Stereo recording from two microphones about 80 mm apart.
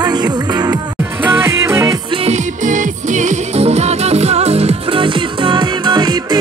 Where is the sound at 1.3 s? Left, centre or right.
Right.